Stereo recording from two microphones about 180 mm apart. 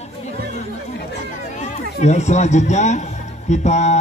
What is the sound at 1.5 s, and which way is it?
Speech, 40° left (ahead or behind).